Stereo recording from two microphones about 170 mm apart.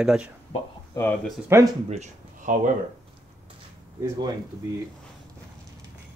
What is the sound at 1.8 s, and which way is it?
Speech, 45° right (ahead or behind).